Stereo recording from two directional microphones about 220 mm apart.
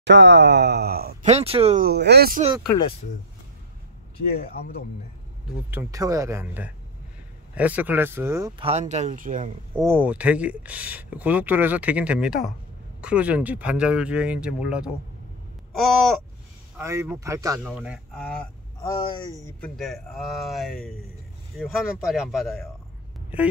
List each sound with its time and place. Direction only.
0.0 s speech: 55° right (ahead or behind)
1.2 s speech: 25° right (ahead or behind)
1.9 s speech: 50° right (ahead or behind)
5.7 s speech: 15° right (ahead or behind); by 9.5 s 35° right (ahead or behind)
9.8 s speech: 10° right (ahead or behind)
16.7 s speech: 15° right (ahead or behind)
17.6 s speech: centre (ahead or behind)
18.8 s speech: 15° left (ahead or behind)
19.6 s speech: centre (ahead or behind)